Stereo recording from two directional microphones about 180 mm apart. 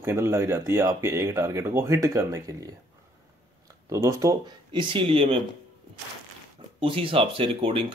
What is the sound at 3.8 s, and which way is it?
Speech, 15° right (ahead or behind).